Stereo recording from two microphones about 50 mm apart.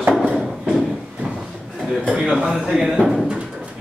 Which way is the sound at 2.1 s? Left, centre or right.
Centre.